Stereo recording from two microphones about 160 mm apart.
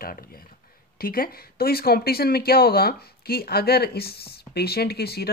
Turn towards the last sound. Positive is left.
turn(degrees=85)